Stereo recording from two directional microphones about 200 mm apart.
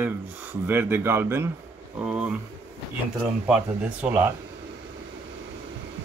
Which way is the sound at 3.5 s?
5° right (ahead or behind).